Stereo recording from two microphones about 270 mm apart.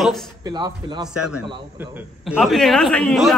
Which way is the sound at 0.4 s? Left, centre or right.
Centre.